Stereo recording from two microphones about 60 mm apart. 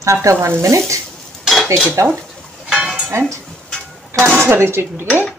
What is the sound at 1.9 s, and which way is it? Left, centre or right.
Speech, right.